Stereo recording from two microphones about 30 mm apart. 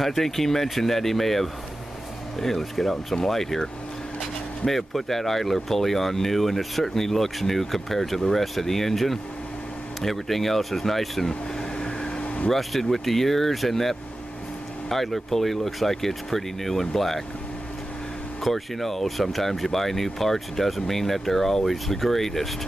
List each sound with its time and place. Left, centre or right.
0.0 s speech: centre
4.6 s speech: centre
11.8 s a sound: left
12.4 s speech: centre
18.4 s speech: centre